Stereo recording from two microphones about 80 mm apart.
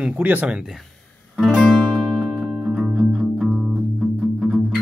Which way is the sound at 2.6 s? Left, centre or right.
Centre.